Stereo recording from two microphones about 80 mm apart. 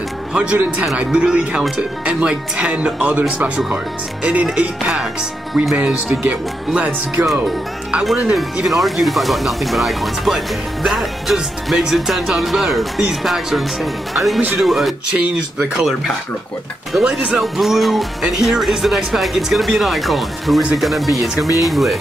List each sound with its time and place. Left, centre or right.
0.3 s speech: centre
8.0 s speech: centre
17.0 s speech: centre
17.4 s speech: centre